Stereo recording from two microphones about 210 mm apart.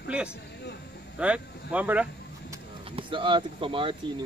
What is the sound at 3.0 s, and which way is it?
Speech, 25° right (ahead or behind).